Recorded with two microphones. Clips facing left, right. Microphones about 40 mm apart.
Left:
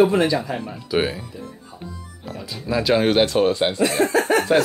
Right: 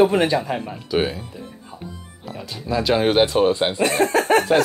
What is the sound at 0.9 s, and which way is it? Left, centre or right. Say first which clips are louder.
Speech: even; centre.